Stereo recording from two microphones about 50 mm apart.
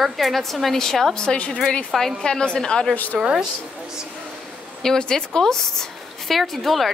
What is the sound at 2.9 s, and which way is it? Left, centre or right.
Speech, left.